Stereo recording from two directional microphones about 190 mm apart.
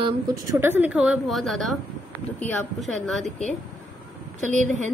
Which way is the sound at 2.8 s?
Centre (ahead or behind).